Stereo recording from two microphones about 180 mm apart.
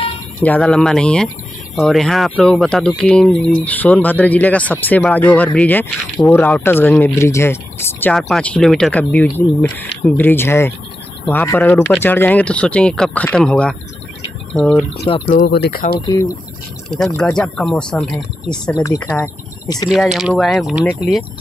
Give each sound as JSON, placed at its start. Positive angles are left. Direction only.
{"t": 0.4, "sound": "speech", "side_deg": 5}
{"t": 15.4, "sound": "speech", "side_deg": 60}
{"t": 16.9, "sound": "speech", "side_deg": 5}
{"t": 18.5, "sound": "speech", "side_deg": 20}
{"t": 19.9, "sound": "speech", "side_deg": 0}